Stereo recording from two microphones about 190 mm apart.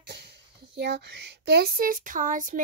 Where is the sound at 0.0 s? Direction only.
60° right (ahead or behind).